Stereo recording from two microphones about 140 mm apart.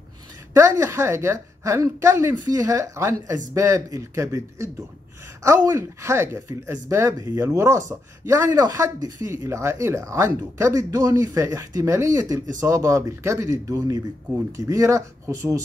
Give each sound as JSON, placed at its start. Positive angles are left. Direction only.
{"t": 0.6, "sound": "speech", "side_deg": -20}